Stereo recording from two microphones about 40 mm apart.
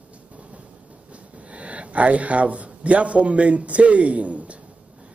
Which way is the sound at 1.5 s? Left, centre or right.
Right.